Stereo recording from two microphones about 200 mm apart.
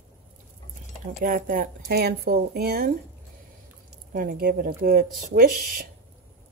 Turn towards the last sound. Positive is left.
turn(degrees=-45)  # may be behind; listen again after turning